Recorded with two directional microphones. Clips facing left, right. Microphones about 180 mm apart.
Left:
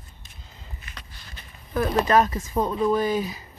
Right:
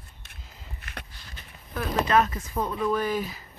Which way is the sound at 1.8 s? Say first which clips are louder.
Left 3 dB; 40° left (ahead or behind).